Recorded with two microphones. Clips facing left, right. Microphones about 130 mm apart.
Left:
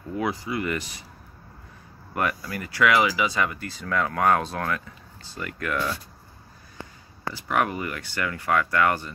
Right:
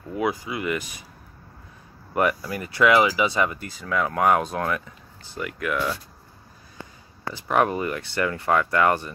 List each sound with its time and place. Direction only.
0.1 s speech: 15° right (ahead or behind)
2.1 s speech: 20° right (ahead or behind)
5.4 s speech: 10° right (ahead or behind)
7.3 s speech: 25° right (ahead or behind)